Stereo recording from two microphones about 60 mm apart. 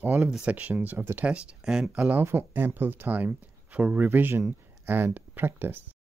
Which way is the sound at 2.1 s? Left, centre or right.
Right.